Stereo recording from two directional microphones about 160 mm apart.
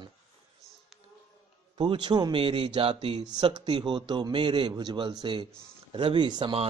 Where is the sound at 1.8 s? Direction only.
30° right (ahead or behind).